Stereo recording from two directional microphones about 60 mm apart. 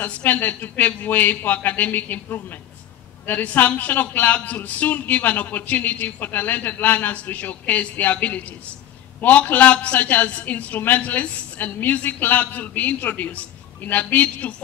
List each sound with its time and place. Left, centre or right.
0.0 s speech: left